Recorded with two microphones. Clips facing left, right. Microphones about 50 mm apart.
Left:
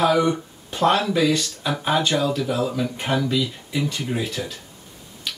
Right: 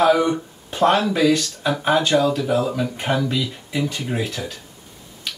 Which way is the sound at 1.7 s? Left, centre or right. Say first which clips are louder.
Right 3 dB; centre.